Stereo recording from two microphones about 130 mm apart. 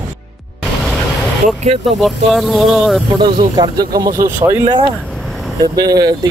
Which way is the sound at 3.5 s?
30° right (ahead or behind).